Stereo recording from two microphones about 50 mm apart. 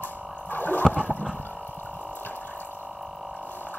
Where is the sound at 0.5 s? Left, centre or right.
Left.